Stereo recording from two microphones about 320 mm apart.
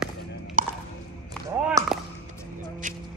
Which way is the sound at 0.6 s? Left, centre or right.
Right.